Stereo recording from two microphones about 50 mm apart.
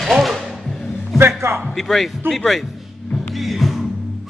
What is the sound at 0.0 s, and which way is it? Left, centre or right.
Music, centre.